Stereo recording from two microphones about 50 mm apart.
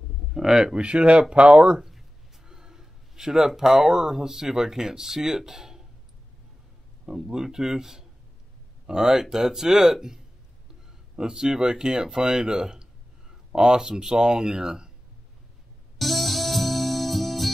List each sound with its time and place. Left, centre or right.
0.3 s speech: centre
0.7 s speech: right
7.1 s speech: centre
16.0 s music: centre